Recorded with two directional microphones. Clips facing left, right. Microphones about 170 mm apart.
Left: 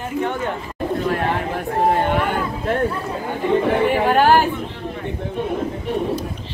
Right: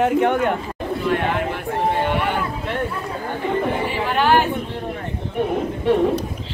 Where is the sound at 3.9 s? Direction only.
45° left (ahead or behind).